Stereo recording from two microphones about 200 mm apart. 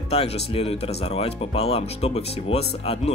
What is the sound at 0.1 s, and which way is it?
Speech, 30° left (ahead or behind).